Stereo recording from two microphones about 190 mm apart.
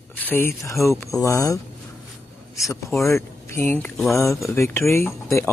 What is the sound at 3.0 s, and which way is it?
Speech, 15° left (ahead or behind).